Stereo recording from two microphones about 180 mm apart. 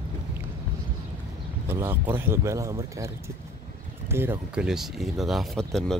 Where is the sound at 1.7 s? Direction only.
10° right (ahead or behind).